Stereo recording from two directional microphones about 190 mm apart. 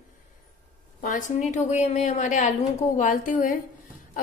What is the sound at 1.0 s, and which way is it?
A woman's voice, 40° left (ahead or behind).